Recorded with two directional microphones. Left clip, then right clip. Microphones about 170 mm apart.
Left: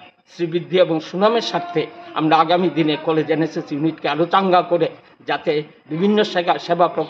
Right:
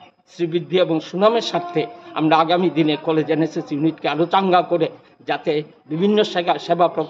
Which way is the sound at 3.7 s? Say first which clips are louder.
Even; 50° right (ahead or behind).